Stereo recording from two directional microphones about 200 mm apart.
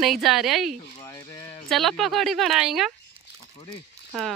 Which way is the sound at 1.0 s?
15° left (ahead or behind).